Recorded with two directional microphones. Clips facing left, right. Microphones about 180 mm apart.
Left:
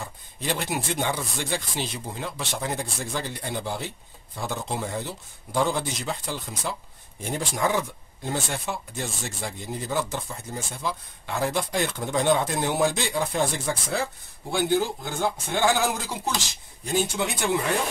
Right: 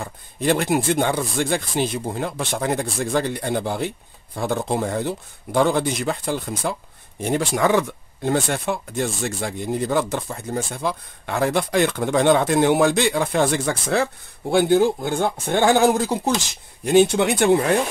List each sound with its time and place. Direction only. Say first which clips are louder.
0.0 s speech: right 10 dB; 55° right (ahead or behind)
7.2 s speech: right 7 dB; 75° right (ahead or behind)
14.5 s speech: right 7 dB; 55° right (ahead or behind)
16.8 s speech: right 10 dB; 70° right (ahead or behind)